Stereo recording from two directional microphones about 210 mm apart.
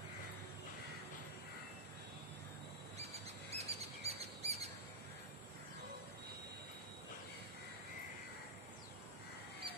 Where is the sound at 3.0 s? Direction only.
30° right (ahead or behind).